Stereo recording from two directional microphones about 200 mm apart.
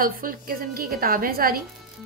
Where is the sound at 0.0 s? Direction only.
45° right (ahead or behind).